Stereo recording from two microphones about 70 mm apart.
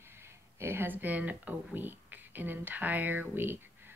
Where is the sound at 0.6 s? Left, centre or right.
Right.